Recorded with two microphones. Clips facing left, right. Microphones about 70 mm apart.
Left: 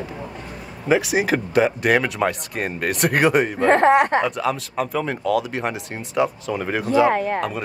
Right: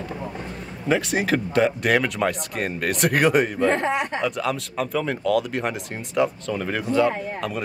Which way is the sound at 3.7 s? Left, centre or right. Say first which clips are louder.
Left 8 dB; left.